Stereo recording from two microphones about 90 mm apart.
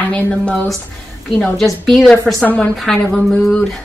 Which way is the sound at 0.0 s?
15° left (ahead or behind).